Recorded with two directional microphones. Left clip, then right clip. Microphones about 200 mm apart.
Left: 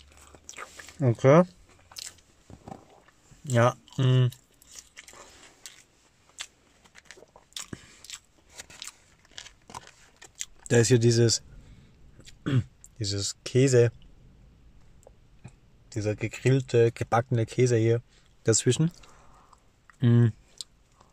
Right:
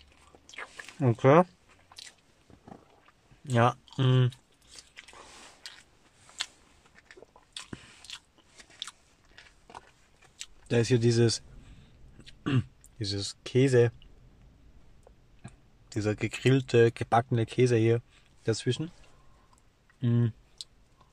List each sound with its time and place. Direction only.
0.0 s walk: 20° left (ahead or behind)
0.7 s speech: 5° left (ahead or behind)
3.4 s speech: 10° left (ahead or behind)
5.0 s biting: 15° left (ahead or behind)
7.5 s biting: 15° left (ahead or behind)
10.3 s a sound: 20° left (ahead or behind)
11.1 s speech: 10° left (ahead or behind)
15.4 s speech: 5° right (ahead or behind)
18.4 s speech: 30° left (ahead or behind)
20.0 s clicking: 35° left (ahead or behind)